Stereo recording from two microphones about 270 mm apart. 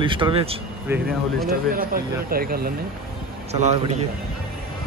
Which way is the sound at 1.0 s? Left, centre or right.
Right.